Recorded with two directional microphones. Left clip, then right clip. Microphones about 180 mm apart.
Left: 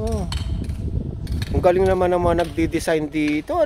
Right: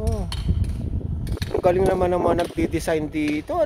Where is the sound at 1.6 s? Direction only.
20° left (ahead or behind).